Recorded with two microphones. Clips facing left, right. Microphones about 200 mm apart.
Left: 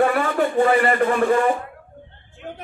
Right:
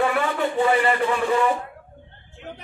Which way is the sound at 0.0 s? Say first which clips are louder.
Left 3 dB; 50° left (ahead or behind).